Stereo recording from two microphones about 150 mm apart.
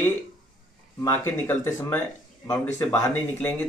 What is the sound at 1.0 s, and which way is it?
Speech, 15° left (ahead or behind).